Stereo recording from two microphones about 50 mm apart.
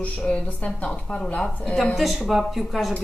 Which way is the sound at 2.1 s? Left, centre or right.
Centre.